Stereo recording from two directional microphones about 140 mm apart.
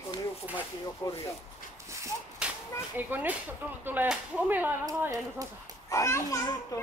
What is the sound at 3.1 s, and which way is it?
Speech, 10° right (ahead or behind).